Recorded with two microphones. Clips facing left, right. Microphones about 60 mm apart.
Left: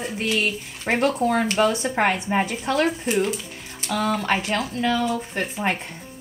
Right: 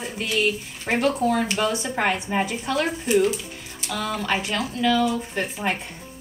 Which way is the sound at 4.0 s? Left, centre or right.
Left.